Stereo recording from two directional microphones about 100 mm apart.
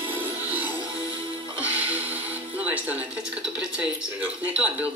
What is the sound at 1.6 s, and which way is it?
Music, 15° right (ahead or behind).